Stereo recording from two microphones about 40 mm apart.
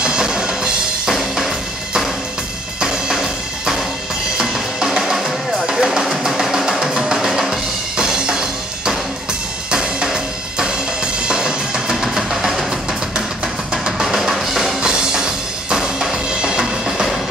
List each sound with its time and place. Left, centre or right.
0.0 s music: right
1.0 s drum kit: centre
2.8 s drum: centre
5.7 s music: centre
9.7 s drum kit: right
12.3 s music: centre
13.8 s music: centre
14.8 s music: centre